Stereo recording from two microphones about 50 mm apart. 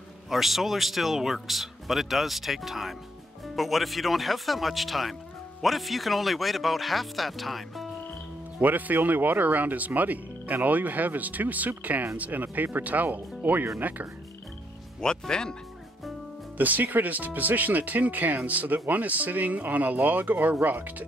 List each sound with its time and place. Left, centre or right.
0.3 s speech: centre
8.5 s speech: right
15.0 s speech: centre
16.5 s speech: right